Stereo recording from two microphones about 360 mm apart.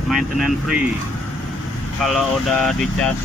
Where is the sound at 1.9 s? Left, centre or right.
Centre.